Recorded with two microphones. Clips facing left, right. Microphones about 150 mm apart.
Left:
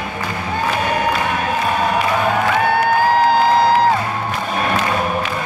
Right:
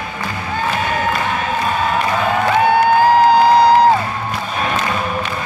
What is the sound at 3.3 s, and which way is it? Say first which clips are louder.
Music: right 3 dB; 15° right (ahead or behind).